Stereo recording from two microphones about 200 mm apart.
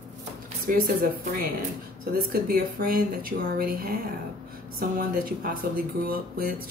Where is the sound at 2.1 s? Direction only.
45° right (ahead or behind).